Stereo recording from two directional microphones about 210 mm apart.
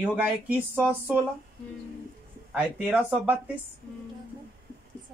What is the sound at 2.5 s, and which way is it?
Speech, 5° right (ahead or behind).